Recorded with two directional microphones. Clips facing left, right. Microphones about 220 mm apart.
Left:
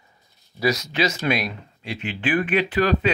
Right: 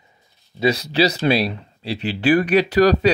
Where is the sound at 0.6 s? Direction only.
30° right (ahead or behind).